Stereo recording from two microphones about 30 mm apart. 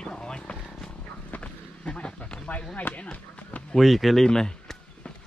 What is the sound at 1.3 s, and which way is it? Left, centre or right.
Vehicle, left.